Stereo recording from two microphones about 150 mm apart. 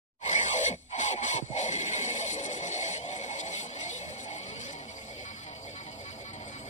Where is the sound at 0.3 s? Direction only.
55° left (ahead or behind).